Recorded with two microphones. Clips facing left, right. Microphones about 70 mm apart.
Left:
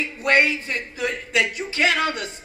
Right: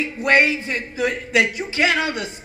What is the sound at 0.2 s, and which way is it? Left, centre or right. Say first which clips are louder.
A man's voice: right 2 dB; centre.